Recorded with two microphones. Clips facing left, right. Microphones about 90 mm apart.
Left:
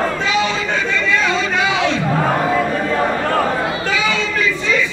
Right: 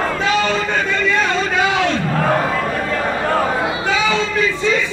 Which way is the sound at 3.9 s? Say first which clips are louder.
Right 3 dB; 30° right (ahead or behind).